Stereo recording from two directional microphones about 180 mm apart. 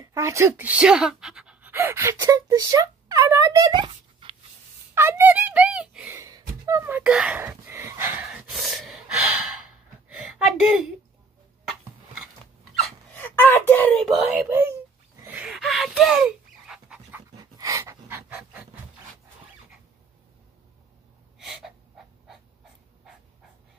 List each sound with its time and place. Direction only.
0.0 s a child's voice: 15° right (ahead or behind)
4.9 s a sound: 15° right (ahead or behind)
6.6 s speech: 15° right (ahead or behind)
8.3 s gasp: centre (ahead or behind)
13.1 s a sound: 10° left (ahead or behind)
14.4 s speech: 10° right (ahead or behind)
15.2 s pant: 5° right (ahead or behind)
17.4 s pant: 20° right (ahead or behind)
21.5 s a sound: centre (ahead or behind)